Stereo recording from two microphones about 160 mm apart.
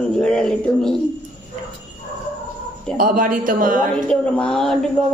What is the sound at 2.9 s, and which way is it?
Speech, 60° right (ahead or behind).